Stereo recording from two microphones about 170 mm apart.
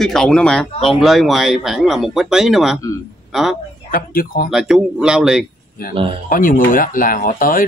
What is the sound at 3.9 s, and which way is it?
Speech, 55° left (ahead or behind).